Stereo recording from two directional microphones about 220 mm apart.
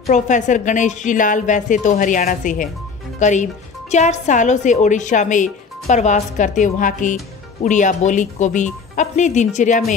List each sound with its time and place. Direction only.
0.1 s a woman's voice: 35° left (ahead or behind)